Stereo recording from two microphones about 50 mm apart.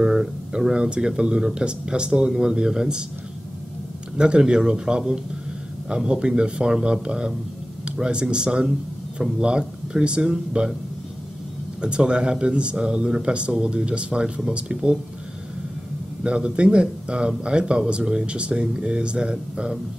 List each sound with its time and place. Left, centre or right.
0.0 s speech: centre
4.2 s speech: centre
11.8 s speech: centre
16.2 s speech: centre